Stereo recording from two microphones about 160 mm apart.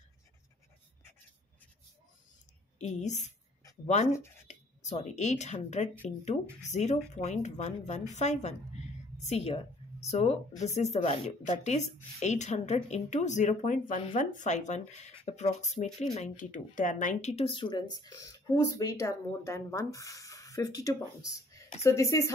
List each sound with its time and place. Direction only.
2.8 s a woman's voice: 45° left (ahead or behind); by 22.3 s 20° left (ahead or behind)